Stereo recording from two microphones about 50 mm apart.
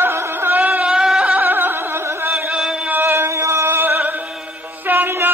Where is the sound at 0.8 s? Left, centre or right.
Centre.